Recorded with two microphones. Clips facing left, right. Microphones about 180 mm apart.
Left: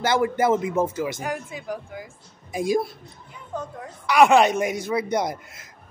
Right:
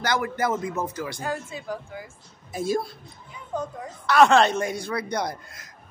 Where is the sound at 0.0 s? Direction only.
25° left (ahead or behind).